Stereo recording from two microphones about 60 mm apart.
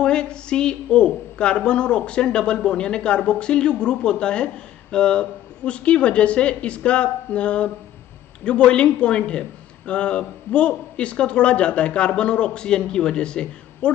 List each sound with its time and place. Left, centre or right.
0.0 s speech: centre